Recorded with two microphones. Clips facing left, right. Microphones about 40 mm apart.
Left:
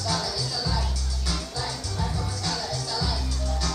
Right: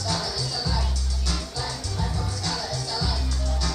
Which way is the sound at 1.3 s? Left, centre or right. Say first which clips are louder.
Even; centre.